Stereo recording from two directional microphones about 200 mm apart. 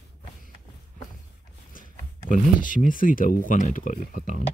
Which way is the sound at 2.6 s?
40° left (ahead or behind).